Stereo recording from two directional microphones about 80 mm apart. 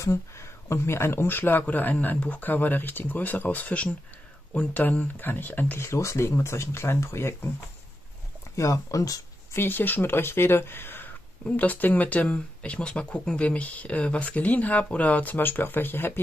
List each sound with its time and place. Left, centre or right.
0.0 s speech: left
5.9 s speech: left
8.5 s speech: left
9.6 s speech: left